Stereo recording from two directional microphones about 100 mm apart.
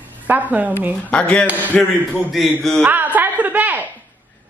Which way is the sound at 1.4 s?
15° right (ahead or behind).